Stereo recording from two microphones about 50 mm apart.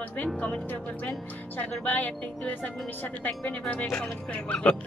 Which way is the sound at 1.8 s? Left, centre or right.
Left.